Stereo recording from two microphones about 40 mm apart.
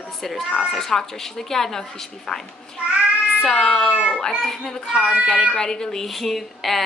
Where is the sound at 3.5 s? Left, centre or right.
Centre.